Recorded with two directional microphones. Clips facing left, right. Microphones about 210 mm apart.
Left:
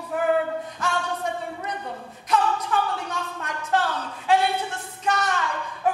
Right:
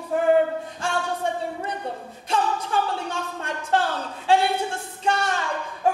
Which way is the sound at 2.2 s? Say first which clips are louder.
Left 1 dB; 30° right (ahead or behind).